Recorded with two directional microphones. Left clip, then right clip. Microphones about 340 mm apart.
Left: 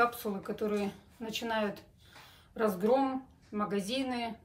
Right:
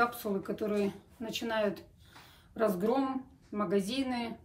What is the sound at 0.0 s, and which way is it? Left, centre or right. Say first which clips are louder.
Speech: left 1 dB; centre.